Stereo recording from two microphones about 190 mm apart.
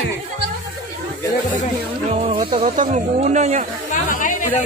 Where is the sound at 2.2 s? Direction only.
35° right (ahead or behind).